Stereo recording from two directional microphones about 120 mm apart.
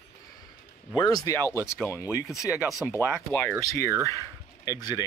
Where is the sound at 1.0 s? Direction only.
35° left (ahead or behind).